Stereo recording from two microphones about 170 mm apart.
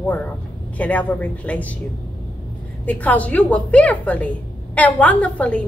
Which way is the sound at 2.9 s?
10° left (ahead or behind).